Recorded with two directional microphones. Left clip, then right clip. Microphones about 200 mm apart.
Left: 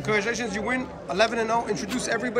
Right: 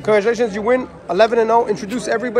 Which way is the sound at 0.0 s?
Centre (ahead or behind).